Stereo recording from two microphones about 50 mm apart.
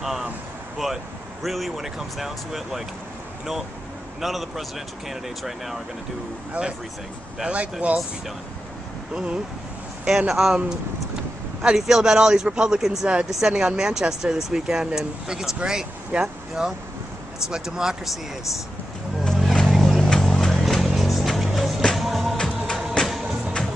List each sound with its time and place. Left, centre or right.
0.0 s a sound: centre
0.8 s speech: centre
4.2 s speech: centre
7.4 s speech: right
9.1 s speech: centre
16.6 s speech: centre
19.2 s vehicle: centre
20.8 s music: centre
23.0 s music: centre